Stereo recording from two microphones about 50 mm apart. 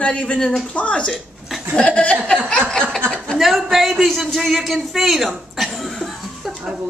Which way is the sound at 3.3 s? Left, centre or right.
Centre.